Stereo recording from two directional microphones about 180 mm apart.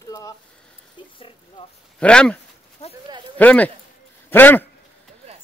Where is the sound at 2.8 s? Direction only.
35° left (ahead or behind).